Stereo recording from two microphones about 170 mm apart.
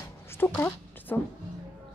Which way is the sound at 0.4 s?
10° left (ahead or behind).